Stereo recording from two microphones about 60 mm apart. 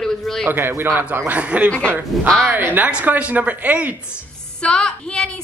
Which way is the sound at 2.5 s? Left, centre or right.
Right.